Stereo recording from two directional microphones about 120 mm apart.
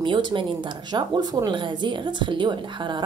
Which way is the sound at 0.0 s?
40° right (ahead or behind).